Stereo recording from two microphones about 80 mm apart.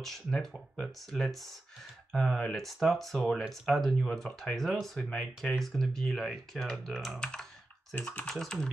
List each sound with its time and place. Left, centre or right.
0.0 s speech: centre
7.9 s speech: centre
8.3 s speech: centre